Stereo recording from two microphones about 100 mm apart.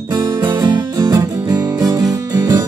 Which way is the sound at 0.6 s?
40° right (ahead or behind).